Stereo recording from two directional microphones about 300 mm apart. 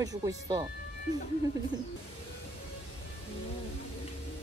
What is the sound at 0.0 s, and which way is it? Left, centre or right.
Speech, centre.